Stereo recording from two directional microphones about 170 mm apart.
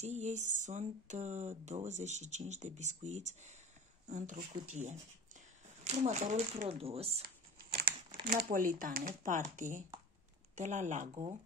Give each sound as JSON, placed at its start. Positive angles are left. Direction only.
{"t": 0.0, "sound": "speech", "side_deg": -40}
{"t": 7.7, "sound": "crumpling", "side_deg": -65}
{"t": 8.4, "sound": "speech", "side_deg": -55}